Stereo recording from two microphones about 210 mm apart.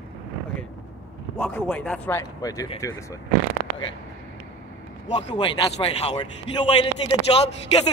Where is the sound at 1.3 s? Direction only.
5° left (ahead or behind).